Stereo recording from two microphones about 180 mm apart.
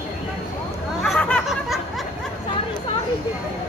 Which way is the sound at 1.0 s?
5° left (ahead or behind).